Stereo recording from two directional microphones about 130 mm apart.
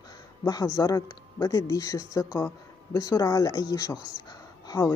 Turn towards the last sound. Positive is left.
turn(degrees=25)  # may be behind; listen again after turning